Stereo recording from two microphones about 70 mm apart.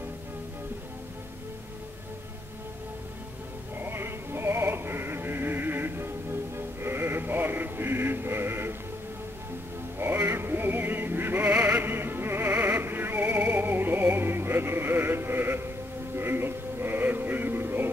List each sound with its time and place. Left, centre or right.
3.8 s music: right
9.9 s music: right